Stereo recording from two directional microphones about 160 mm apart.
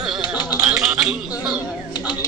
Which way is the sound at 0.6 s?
5° right (ahead or behind).